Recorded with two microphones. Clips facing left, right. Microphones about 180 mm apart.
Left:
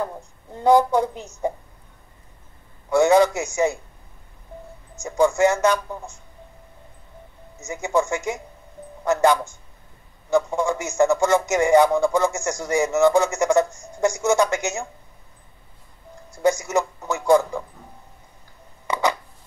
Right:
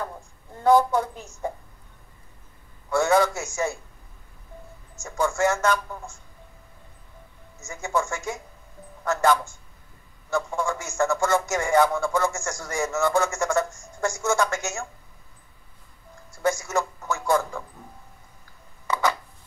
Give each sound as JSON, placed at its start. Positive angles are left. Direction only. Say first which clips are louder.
{"t": 0.6, "sound": "a man's voice", "louder": "left 2 dB", "side_deg": 15}
{"t": 2.9, "sound": "a man's voice", "louder": "left 5 dB", "side_deg": 20}
{"t": 4.9, "sound": "a man's voice", "louder": "left 7 dB", "side_deg": 15}
{"t": 7.5, "sound": "a man's voice", "louder": "left 5 dB", "side_deg": 20}
{"t": 16.3, "sound": "a man's voice", "louder": "left 5 dB", "side_deg": 20}
{"t": 18.9, "sound": "a sound", "louder": "left 2 dB", "side_deg": 15}